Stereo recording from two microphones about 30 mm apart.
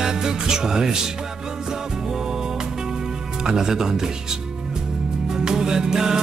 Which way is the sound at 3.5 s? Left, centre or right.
Centre.